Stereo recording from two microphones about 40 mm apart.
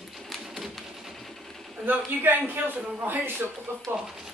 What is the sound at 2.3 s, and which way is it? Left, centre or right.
Speech, right.